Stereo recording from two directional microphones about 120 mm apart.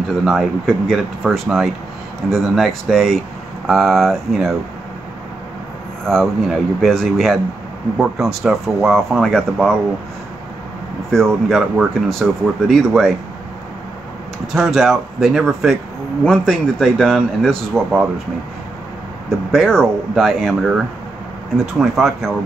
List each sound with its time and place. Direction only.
0.2 s speech: centre (ahead or behind)
6.0 s speech: centre (ahead or behind)
11.1 s speech: 5° left (ahead or behind)
14.5 s speech: centre (ahead or behind)
19.2 s speech: 5° left (ahead or behind)